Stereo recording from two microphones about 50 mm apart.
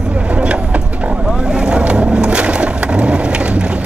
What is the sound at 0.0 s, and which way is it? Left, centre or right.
Vehicle, right.